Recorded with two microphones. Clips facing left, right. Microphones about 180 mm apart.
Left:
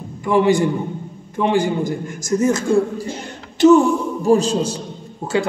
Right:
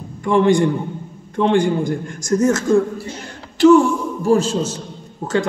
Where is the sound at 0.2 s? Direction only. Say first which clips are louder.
Right 1 dB; 5° left (ahead or behind).